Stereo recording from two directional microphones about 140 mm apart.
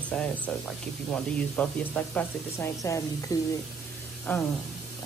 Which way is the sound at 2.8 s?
25° left (ahead or behind).